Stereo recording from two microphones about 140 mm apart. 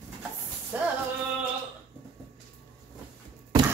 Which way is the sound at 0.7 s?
10° right (ahead or behind).